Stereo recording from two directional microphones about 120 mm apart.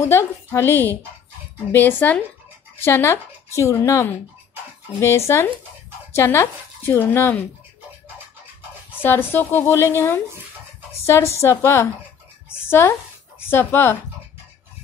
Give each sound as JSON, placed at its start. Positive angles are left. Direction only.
{"t": 0.0, "sound": "a woman's voice", "side_deg": 20}
{"t": 9.0, "sound": "a woman's voice", "side_deg": 15}